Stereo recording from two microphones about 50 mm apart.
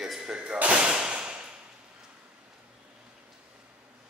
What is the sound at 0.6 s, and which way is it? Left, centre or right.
Whip, right.